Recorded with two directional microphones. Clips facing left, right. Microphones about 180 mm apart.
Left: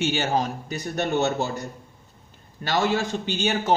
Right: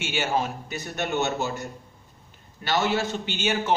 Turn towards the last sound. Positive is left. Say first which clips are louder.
# left 2 dB
turn(degrees=40)  # may be behind; listen again after turning